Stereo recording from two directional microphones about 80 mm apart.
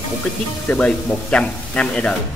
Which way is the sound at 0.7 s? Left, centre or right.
Centre.